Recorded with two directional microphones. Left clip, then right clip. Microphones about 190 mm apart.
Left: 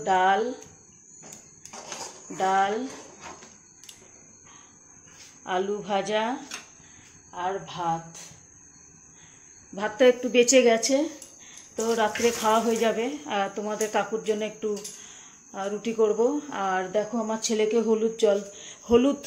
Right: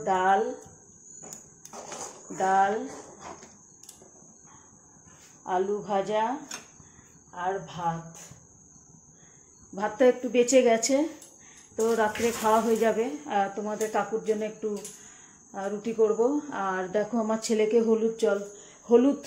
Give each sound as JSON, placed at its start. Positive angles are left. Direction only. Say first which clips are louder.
{"t": 0.1, "sound": "a woman's voice", "louder": "left 2 dB", "side_deg": 5}
{"t": 2.3, "sound": "speech", "louder": "even", "side_deg": 5}
{"t": 5.4, "sound": "a woman's voice", "louder": "even", "side_deg": 10}
{"t": 7.3, "sound": "a woman's voice", "louder": "left 1 dB", "side_deg": 15}
{"t": 9.8, "sound": "speech", "louder": "left 2 dB", "side_deg": 5}
{"t": 10.8, "sound": "speech", "louder": "left 1 dB", "side_deg": -5}
{"t": 11.7, "sound": "speech", "louder": "even", "side_deg": 5}
{"t": 16.9, "sound": "speech", "louder": "even", "side_deg": -15}
{"t": 17.5, "sound": "speech", "louder": "even", "side_deg": -5}